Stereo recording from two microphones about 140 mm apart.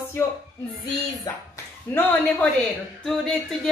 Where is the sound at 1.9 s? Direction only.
15° left (ahead or behind).